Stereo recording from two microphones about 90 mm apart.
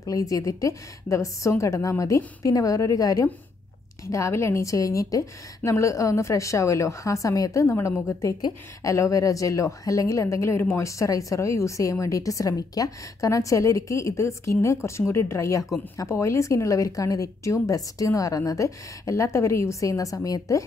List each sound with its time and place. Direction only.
0.0 s a woman's voice: 40° left (ahead or behind)